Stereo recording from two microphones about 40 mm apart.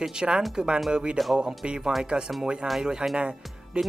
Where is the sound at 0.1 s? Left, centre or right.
Right.